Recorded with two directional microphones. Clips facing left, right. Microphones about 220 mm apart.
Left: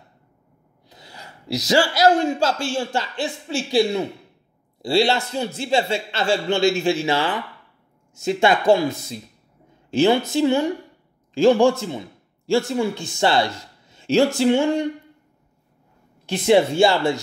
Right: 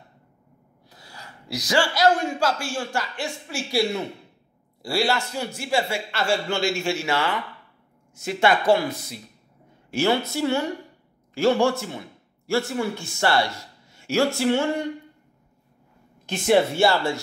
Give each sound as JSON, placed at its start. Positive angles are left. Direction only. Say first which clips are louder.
{"t": 0.8, "sound": "a man's voice", "louder": "left 2 dB", "side_deg": 20}
{"t": 4.8, "sound": "a man's voice", "louder": "left 5 dB", "side_deg": 25}
{"t": 7.0, "sound": "a man's voice", "louder": "left 3 dB", "side_deg": 30}
{"t": 16.3, "sound": "a man's voice", "louder": "left 3 dB", "side_deg": 15}